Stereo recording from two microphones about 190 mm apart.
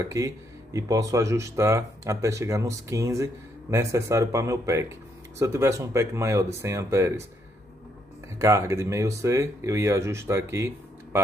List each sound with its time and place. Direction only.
0.0 s speech: 15° right (ahead or behind)
8.4 s speech: 15° right (ahead or behind)